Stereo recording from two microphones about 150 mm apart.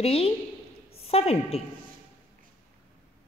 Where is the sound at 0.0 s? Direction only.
40° left (ahead or behind).